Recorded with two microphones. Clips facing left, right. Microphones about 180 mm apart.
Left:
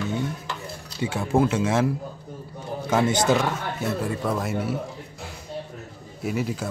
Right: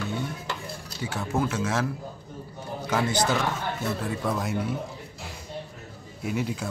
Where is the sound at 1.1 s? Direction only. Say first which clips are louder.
Left 6 dB; 25° left (ahead or behind).